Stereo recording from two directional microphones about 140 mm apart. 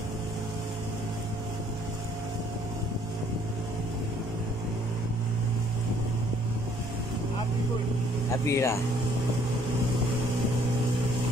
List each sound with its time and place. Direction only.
8.5 s speech: 20° left (ahead or behind)